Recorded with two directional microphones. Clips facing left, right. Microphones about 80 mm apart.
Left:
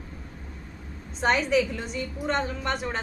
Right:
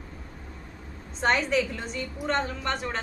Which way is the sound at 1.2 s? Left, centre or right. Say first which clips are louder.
Left 1 dB; centre.